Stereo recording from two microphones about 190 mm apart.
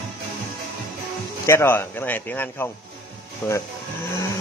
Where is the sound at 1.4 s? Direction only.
10° left (ahead or behind).